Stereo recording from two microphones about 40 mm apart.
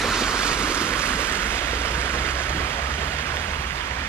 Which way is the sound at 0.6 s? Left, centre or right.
Left.